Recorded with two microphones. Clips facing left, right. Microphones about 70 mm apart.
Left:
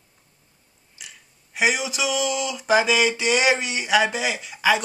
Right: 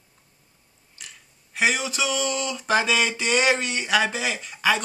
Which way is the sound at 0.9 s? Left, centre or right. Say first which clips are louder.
Left 1 dB; centre.